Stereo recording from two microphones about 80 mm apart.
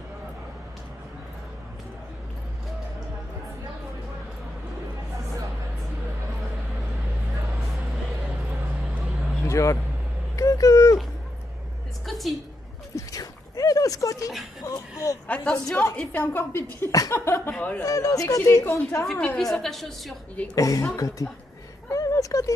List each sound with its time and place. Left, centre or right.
9.4 s vehicle: left
10.3 s speech: left
12.1 s a woman's voice: centre
12.9 s a sound: left
14.6 s a woman's voice: left
15.2 s a woman's voice: centre; by 17.6 s left
17.6 s a woman's voice: centre
17.8 s a woman's voice: left
19.1 s a woman's voice: centre
20.5 s a woman's voice: left
21.9 s a sound: left